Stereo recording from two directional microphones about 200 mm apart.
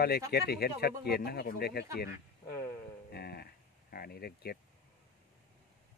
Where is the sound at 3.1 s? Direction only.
50° left (ahead or behind).